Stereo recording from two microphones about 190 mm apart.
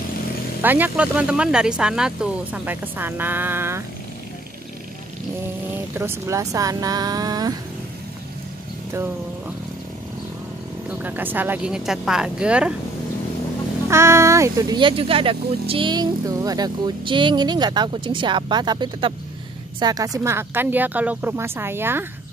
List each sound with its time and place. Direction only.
0.6 s speech: 10° right (ahead or behind)
5.9 s speech: 15° right (ahead or behind)
10.9 s speech: 10° right (ahead or behind)
13.8 s speech: 15° right (ahead or behind)